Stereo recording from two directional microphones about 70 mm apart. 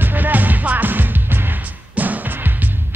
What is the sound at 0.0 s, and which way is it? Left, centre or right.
Music, right.